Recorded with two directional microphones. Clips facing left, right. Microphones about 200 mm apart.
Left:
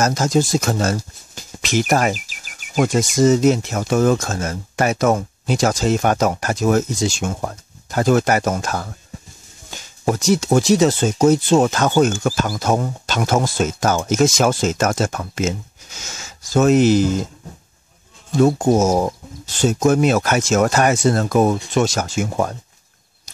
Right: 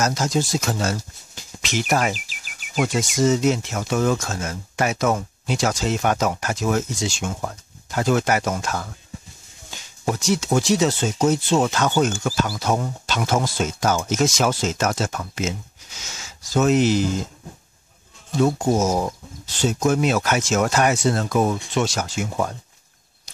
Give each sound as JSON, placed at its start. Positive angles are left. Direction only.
{"t": 0.0, "sound": "speech", "side_deg": 45}
{"t": 18.4, "sound": "speech", "side_deg": 50}